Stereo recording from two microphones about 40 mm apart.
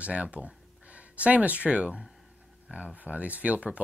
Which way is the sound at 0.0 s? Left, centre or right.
Right.